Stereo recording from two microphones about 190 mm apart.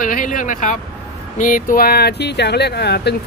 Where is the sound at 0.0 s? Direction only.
45° left (ahead or behind).